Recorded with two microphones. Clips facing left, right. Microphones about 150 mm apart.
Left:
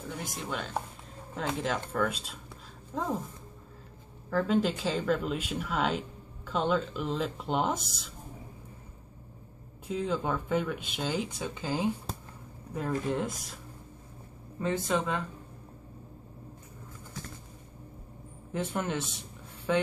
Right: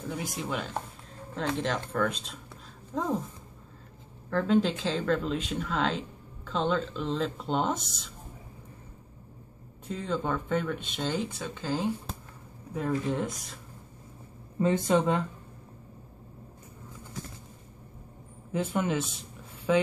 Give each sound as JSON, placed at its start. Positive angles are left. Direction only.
{"t": 0.1, "sound": "speech", "side_deg": 0}
{"t": 4.3, "sound": "speech", "side_deg": 5}
{"t": 9.8, "sound": "speech", "side_deg": 5}
{"t": 12.7, "sound": "speech", "side_deg": 0}
{"t": 14.6, "sound": "speech", "side_deg": -20}
{"t": 18.5, "sound": "speech", "side_deg": 0}